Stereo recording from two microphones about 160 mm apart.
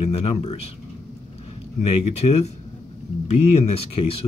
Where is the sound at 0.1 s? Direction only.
40° left (ahead or behind).